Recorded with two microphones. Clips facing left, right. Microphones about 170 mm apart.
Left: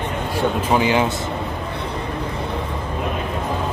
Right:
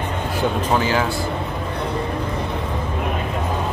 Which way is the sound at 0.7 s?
20° left (ahead or behind).